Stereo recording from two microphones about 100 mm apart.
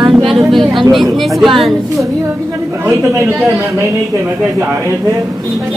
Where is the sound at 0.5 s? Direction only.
Centre (ahead or behind).